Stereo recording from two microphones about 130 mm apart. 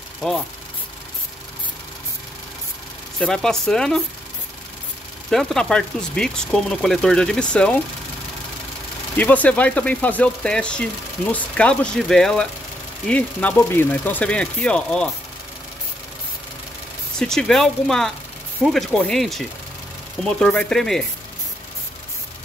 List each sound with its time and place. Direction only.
0.2 s speech: centre (ahead or behind)
3.2 s speech: 5° left (ahead or behind)
5.3 s speech: 5° left (ahead or behind)
9.1 s speech: 10° left (ahead or behind)
17.2 s speech: 5° left (ahead or behind)